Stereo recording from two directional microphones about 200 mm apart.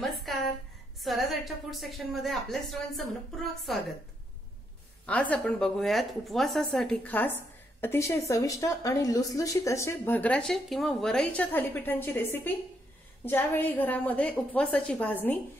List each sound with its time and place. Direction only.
0.0 s a sound: centre (ahead or behind)
1.0 s a woman's voice: centre (ahead or behind)
5.0 s a woman's voice: 5° left (ahead or behind)